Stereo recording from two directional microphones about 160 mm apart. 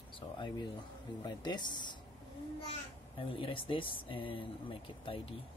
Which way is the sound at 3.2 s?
35° left (ahead or behind).